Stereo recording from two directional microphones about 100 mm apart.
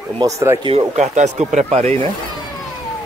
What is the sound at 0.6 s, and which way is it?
Speech, 90° right.